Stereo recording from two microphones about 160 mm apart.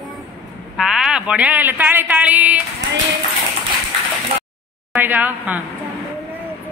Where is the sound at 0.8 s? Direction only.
Centre (ahead or behind).